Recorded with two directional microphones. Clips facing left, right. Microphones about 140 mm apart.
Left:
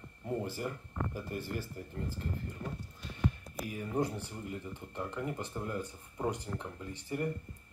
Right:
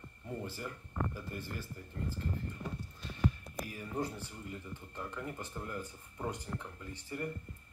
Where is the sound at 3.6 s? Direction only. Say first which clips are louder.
Left 4 dB; 20° left (ahead or behind).